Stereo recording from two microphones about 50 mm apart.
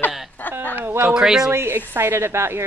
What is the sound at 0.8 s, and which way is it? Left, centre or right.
Speech, right.